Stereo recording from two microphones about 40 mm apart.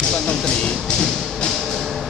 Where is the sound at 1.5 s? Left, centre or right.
Centre.